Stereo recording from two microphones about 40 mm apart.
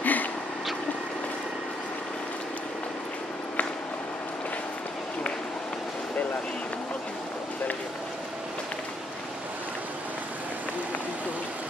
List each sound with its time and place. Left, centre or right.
0.0 s vehicle: left